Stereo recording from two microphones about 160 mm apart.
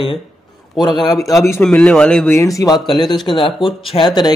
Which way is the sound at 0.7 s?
25° left (ahead or behind).